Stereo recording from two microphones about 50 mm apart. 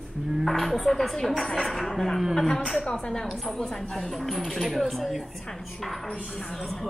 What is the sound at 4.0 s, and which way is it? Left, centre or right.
Speech, centre.